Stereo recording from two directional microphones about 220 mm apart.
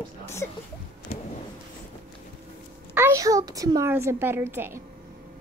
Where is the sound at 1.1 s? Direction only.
40° left (ahead or behind).